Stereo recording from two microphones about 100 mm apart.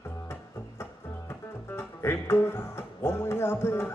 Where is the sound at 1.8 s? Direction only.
25° left (ahead or behind).